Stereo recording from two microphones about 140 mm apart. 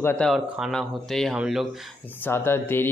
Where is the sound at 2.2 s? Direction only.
15° left (ahead or behind).